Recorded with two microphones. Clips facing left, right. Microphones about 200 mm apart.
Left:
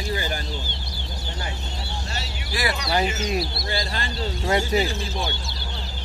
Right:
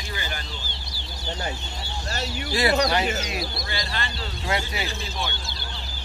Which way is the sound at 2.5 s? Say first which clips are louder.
Right 4 dB; 25° right (ahead or behind).